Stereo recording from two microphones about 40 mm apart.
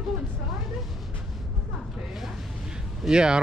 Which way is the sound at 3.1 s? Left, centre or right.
Right.